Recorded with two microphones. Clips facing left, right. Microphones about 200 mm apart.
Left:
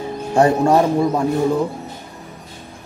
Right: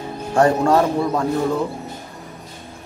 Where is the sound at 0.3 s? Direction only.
20° left (ahead or behind).